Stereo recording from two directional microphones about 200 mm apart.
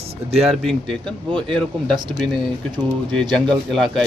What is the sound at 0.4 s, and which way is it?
A man's voice, centre (ahead or behind).